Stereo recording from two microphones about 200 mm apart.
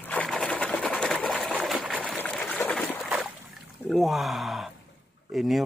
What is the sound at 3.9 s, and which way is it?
Speech, centre (ahead or behind).